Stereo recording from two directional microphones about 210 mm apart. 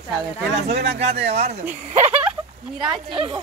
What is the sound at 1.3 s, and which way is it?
Speech, 30° right (ahead or behind).